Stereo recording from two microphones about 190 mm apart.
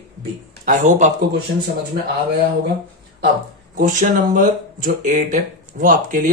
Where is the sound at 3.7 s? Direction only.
45° right (ahead or behind).